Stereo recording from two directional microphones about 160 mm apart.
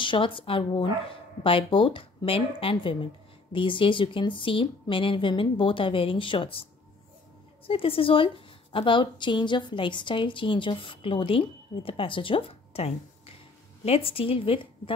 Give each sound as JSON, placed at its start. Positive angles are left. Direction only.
{"t": 0.0, "sound": "a woman's voice", "side_deg": 30}
{"t": 7.6, "sound": "a woman's voice", "side_deg": 35}